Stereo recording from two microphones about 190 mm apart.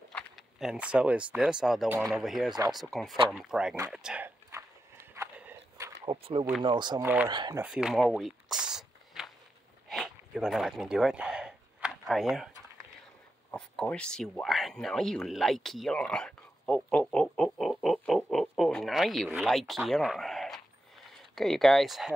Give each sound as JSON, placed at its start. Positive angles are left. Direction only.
{"t": 0.1, "sound": "speech", "side_deg": 0}
{"t": 3.9, "sound": "a sound", "side_deg": -5}
{"t": 5.1, "sound": "dog", "side_deg": -15}
{"t": 6.0, "sound": "speech", "side_deg": -25}
{"t": 7.0, "sound": "speech", "side_deg": -10}
{"t": 7.2, "sound": "speech", "side_deg": -20}
{"t": 7.6, "sound": "a sound", "side_deg": -5}
{"t": 13.5, "sound": "speech", "side_deg": 5}
{"t": 19.7, "sound": "a sound", "side_deg": 0}
{"t": 21.4, "sound": "speech", "side_deg": 0}